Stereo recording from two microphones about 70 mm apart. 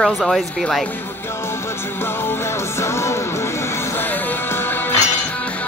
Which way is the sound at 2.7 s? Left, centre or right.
Left.